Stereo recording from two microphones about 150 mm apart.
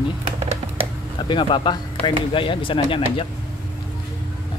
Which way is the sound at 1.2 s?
35° left (ahead or behind).